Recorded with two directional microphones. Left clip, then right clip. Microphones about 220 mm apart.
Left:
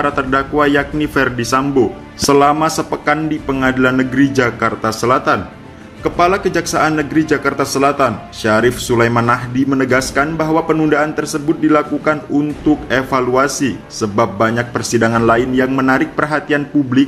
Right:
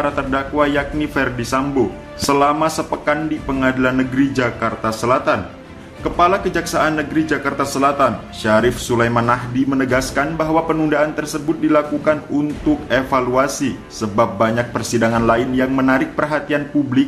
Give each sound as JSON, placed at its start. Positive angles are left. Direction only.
{"t": 0.0, "sound": "speech", "side_deg": 20}